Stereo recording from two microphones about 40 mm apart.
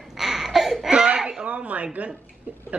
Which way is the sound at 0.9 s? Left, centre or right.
Right.